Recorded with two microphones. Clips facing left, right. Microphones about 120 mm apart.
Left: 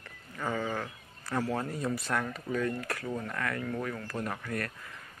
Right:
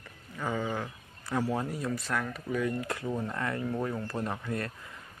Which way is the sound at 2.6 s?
20° right (ahead or behind).